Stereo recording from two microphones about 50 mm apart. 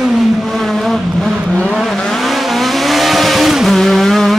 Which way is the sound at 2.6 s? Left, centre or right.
Centre.